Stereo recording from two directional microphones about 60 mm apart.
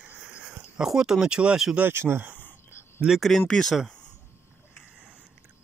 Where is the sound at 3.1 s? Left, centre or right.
Centre.